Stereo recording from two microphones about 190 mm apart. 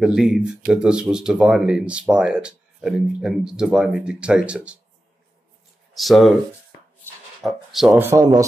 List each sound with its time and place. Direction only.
0.0 s speech: 5° right (ahead or behind)
5.9 s speech: centre (ahead or behind)
7.4 s speech: centre (ahead or behind)
8.1 s speech: 15° right (ahead or behind)